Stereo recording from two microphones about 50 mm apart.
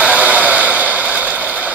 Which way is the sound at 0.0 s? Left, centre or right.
Right.